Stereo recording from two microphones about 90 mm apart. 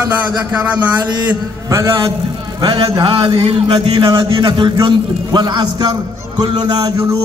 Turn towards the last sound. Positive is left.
turn(degrees=-45)  # may be behind; listen again after turning